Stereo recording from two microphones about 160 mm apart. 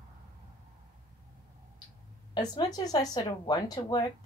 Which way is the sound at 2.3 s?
25° left (ahead or behind).